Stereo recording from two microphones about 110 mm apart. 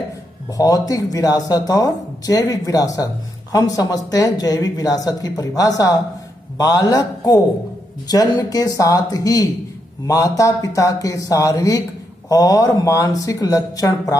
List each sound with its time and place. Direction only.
0.5 s speech: 35° left (ahead or behind)